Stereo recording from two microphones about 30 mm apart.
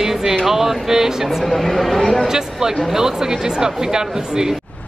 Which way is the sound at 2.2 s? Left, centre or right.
Centre.